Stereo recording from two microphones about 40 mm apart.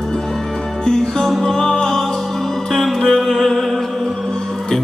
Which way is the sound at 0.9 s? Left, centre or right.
Centre.